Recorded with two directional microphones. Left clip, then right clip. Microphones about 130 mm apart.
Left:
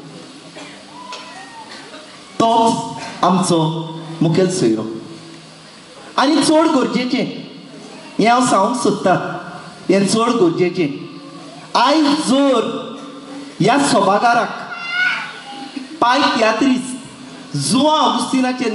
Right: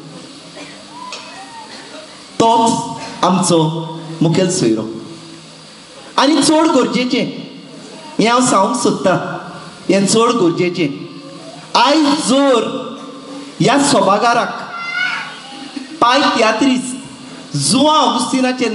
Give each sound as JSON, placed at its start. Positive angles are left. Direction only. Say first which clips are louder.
{"t": 2.3, "sound": "music", "louder": "right 2 dB", "side_deg": -15}
{"t": 3.2, "sound": "a man's voice", "louder": "right 2 dB", "side_deg": -15}
{"t": 6.1, "sound": "a man's voice", "louder": "right 1 dB", "side_deg": -20}
{"t": 16.0, "sound": "a man's voice", "louder": "right 2 dB", "side_deg": -20}